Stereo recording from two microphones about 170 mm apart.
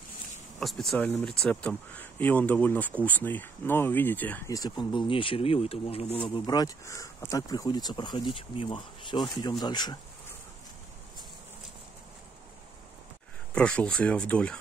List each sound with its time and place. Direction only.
0.6 s speech: centre (ahead or behind)
4.5 s speech: 20° left (ahead or behind)
13.6 s speech: 5° left (ahead or behind)